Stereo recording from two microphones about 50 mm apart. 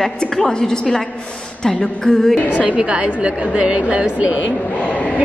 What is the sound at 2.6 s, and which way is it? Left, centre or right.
A woman's voice, right.